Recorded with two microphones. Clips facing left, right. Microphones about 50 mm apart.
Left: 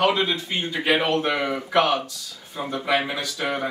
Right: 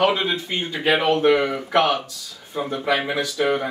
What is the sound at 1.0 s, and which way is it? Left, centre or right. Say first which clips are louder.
A woman's voice: right 5 dB; centre.